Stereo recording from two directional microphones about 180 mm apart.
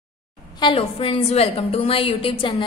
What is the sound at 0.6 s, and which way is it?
A woman's voice, 30° left (ahead or behind).